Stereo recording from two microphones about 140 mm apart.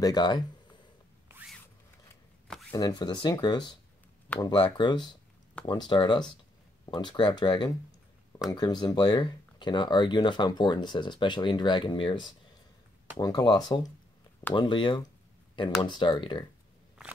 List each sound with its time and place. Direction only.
0.0 s speech: 30° left (ahead or behind)
2.7 s speech: 30° left (ahead or behind)